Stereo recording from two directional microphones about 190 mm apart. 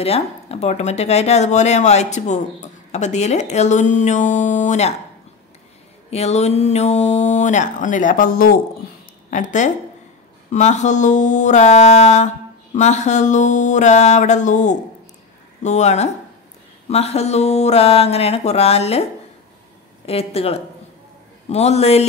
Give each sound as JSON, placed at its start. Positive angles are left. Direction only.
{"t": 0.0, "sound": "speech", "side_deg": 30}
{"t": 6.0, "sound": "speech", "side_deg": 35}
{"t": 20.1, "sound": "speech", "side_deg": 30}